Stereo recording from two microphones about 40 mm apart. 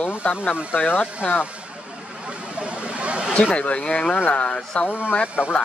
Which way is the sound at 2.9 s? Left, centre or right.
Right.